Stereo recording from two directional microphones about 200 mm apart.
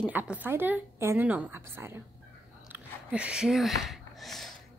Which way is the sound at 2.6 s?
5° right (ahead or behind).